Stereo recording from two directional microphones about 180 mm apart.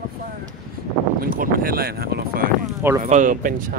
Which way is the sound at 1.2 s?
50° right (ahead or behind).